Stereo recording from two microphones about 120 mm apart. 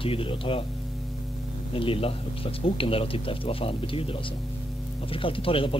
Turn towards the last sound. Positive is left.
turn(degrees=50)  # may be behind; listen again after turning